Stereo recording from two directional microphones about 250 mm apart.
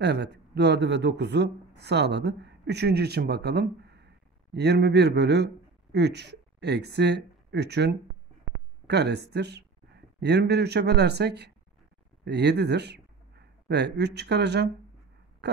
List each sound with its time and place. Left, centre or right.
0.0 s a man's voice: right